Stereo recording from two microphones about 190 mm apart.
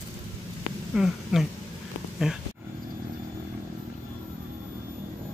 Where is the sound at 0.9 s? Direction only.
Centre (ahead or behind).